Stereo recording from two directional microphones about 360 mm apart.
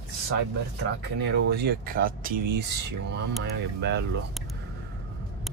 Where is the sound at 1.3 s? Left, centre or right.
Right.